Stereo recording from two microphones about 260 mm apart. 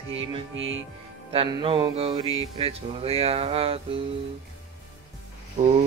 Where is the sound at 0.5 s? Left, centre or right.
Right.